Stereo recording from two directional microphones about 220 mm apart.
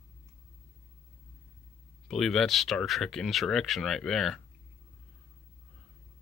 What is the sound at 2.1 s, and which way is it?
Speech, centre (ahead or behind).